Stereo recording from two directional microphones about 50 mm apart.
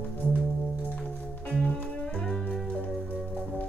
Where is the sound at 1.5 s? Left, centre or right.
Left.